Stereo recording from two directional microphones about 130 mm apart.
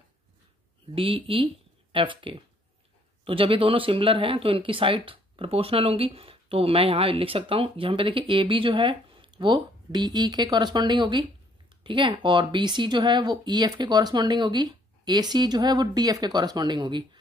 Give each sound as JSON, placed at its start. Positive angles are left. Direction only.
{"t": 0.9, "sound": "speech", "side_deg": -40}